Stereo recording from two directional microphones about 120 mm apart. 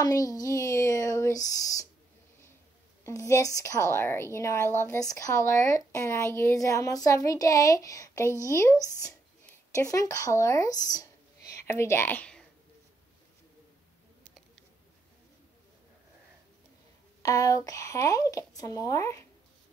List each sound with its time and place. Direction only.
0.0 s a woman's voice: 30° left (ahead or behind)
3.0 s a woman's voice: 25° left (ahead or behind); by 12.4 s 10° left (ahead or behind)
17.2 s a woman's voice: 30° left (ahead or behind)